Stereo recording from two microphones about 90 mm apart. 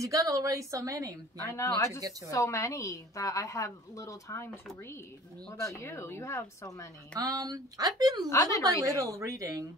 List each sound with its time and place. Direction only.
0.0 s a woman's voice: 40° right (ahead or behind)
1.4 s a woman's voice: 30° left (ahead or behind)
2.0 s a woman's voice: 40° right (ahead or behind)
2.3 s a woman's voice: 35° left (ahead or behind)
5.5 s a woman's voice: 35° left (ahead or behind)
7.2 s speech: 40° right (ahead or behind)
8.3 s a woman's voice: 35° left (ahead or behind)
9.1 s a woman's voice: 35° right (ahead or behind)